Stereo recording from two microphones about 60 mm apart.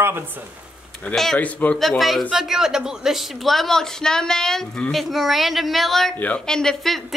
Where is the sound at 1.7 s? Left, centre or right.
Centre.